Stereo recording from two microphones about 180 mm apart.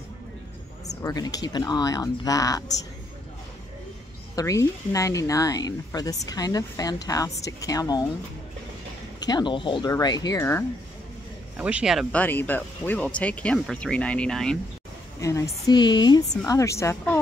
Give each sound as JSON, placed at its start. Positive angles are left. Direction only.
{"t": 0.8, "sound": "speech", "side_deg": 20}
{"t": 4.4, "sound": "speech", "side_deg": 20}
{"t": 9.2, "sound": "speech", "side_deg": 25}
{"t": 11.5, "sound": "speech", "side_deg": -5}
{"t": 12.2, "sound": "speech", "side_deg": 10}
{"t": 15.1, "sound": "speech", "side_deg": 20}